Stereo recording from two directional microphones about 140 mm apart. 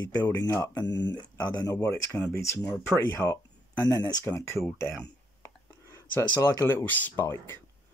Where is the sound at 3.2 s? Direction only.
5° left (ahead or behind).